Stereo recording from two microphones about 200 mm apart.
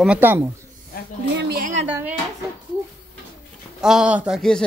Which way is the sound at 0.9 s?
50° left (ahead or behind).